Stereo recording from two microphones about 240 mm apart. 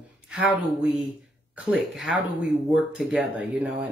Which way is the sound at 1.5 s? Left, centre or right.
Centre.